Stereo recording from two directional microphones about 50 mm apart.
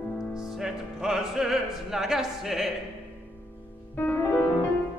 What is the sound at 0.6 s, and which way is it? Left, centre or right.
Speech, centre.